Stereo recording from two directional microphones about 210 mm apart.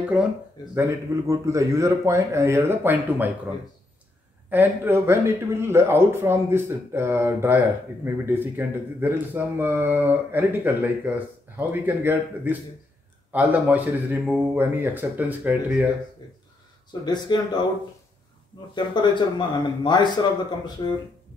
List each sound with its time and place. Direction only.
0.2 s speech: 5° right (ahead or behind)
4.5 s speech: 10° right (ahead or behind)
17.0 s speech: 20° left (ahead or behind)
18.8 s speech: 20° left (ahead or behind)